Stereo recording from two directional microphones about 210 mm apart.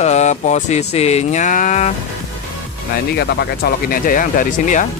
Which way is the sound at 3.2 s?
45° left (ahead or behind).